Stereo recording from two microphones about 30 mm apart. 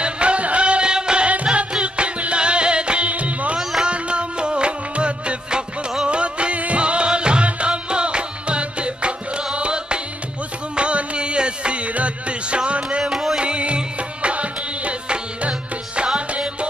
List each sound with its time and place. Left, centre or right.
0.0 s music: right
1.2 s music: right
3.1 s music: right
3.8 s music: right
13.0 s music: centre
13.4 s music: right